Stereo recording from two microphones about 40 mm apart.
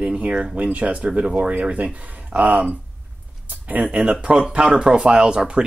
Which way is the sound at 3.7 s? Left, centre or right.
Right.